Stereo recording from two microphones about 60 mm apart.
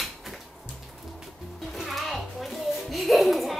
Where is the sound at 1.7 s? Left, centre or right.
Centre.